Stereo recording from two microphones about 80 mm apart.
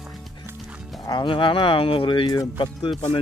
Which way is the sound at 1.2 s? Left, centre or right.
Left.